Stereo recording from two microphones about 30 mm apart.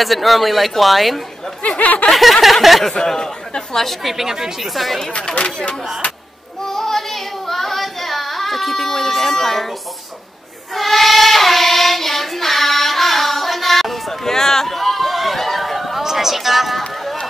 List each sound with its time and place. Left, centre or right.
0.0 s speech: centre
1.8 s snicker: left
2.7 s speech: centre
3.1 s speech: centre
4.0 s speech: centre
4.6 s speech: centre
5.4 s speech: left
6.6 s singing: centre
10.7 s child singing: centre
14.2 s a sound: centre
16.0 s speech: centre